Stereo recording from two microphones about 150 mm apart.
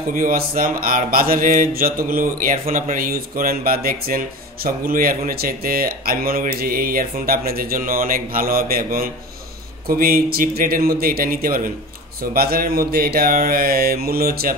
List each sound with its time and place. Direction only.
0.1 s speech: 70° right (ahead or behind)
12.2 s speech: 85° right